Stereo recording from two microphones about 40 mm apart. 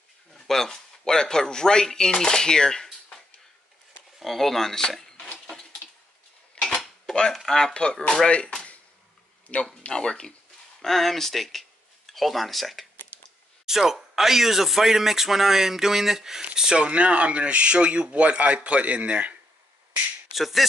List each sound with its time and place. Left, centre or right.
0.3 s speech: centre
4.2 s speech: centre
6.6 s cutlery: left
7.3 s speech: centre
7.7 s speech: left
9.7 s speech: left
10.8 s speech: centre
16.8 s speech: right
20.3 s speech: centre